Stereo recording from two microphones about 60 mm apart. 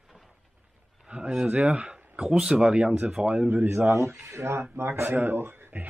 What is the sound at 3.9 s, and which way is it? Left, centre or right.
Speech, right.